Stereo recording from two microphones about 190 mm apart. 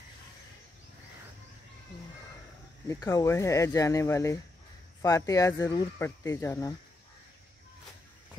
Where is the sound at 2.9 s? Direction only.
15° left (ahead or behind).